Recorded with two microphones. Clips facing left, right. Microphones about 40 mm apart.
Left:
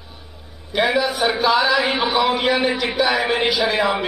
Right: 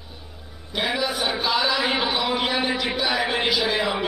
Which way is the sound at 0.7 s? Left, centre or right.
Centre.